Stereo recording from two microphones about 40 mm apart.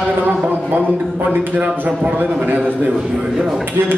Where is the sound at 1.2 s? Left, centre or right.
Right.